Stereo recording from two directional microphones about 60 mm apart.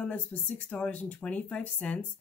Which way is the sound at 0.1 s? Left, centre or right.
Left.